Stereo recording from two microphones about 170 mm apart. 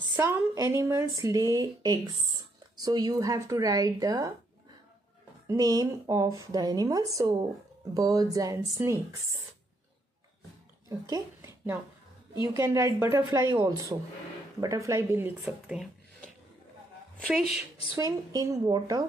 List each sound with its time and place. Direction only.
0.1 s speech: 15° right (ahead or behind)
5.5 s speech: 20° right (ahead or behind)
10.9 s speech: 20° right (ahead or behind); by 15.9 s 5° right (ahead or behind)
17.9 s speech: 20° right (ahead or behind)